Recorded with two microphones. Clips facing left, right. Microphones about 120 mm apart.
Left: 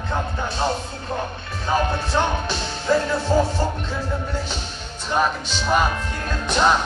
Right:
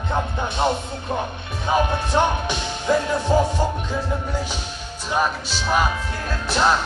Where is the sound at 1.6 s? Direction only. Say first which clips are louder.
Right 1 dB; 15° right (ahead or behind).